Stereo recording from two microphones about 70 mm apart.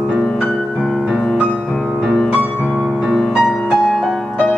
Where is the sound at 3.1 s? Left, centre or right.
Centre.